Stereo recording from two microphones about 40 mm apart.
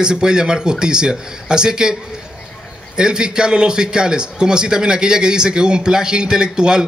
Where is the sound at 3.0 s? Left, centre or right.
Centre.